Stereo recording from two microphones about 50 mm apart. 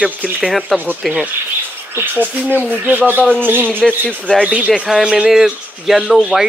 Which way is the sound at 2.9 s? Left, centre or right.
Right.